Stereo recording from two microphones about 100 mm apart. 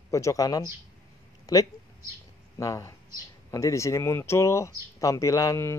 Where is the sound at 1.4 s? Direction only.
35° left (ahead or behind).